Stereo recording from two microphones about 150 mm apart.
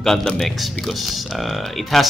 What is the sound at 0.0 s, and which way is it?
Speech, centre (ahead or behind).